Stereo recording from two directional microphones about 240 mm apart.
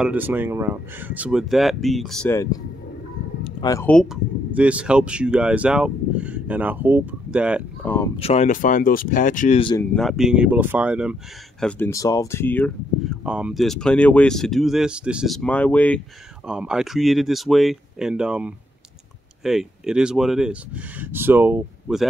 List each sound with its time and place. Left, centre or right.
0.0 s speech: centre
3.4 s speech: centre
7.8 s speech: centre
8.2 s speech: left
9.6 s speech: centre
9.9 s speech: centre
11.6 s speech: centre
13.2 s speech: centre